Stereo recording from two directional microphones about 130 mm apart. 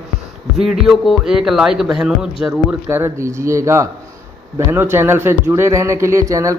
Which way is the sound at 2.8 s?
20° right (ahead or behind).